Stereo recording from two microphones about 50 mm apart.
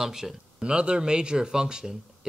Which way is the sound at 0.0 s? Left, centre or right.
Centre.